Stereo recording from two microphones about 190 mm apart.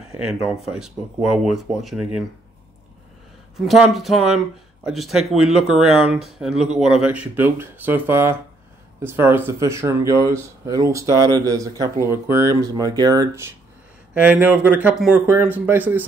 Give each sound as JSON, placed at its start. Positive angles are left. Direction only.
{"t": 0.2, "sound": "speech", "side_deg": -5}
{"t": 3.5, "sound": "speech", "side_deg": 0}